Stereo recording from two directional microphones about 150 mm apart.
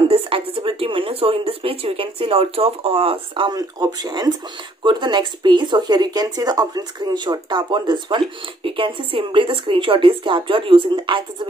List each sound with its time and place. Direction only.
0.1 s speech: 40° right (ahead or behind)